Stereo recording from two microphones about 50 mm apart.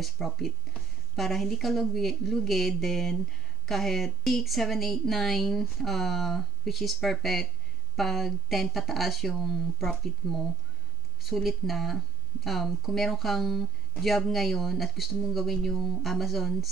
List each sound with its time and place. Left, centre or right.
0.0 s speech: centre